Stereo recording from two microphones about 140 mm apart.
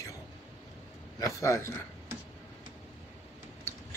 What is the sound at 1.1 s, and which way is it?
Speech, 20° left (ahead or behind).